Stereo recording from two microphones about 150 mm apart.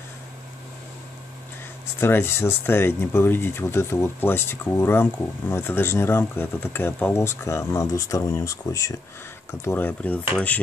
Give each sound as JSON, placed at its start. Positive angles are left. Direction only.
{"t": 2.0, "sound": "speech", "side_deg": 15}